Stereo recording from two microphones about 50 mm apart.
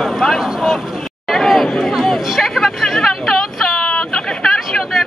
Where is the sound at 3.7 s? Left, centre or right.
Left.